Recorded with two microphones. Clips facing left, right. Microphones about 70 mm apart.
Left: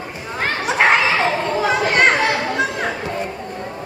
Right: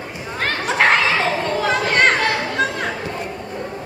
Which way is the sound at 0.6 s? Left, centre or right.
Centre.